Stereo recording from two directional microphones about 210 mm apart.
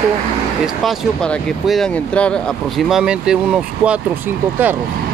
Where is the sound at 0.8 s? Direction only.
Centre (ahead or behind).